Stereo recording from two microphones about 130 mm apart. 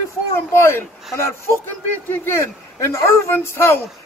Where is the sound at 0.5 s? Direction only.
20° left (ahead or behind).